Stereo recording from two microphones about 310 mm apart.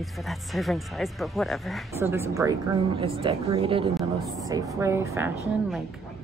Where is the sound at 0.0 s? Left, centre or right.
Centre.